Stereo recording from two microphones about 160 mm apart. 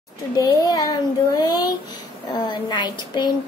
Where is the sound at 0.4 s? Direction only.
25° left (ahead or behind).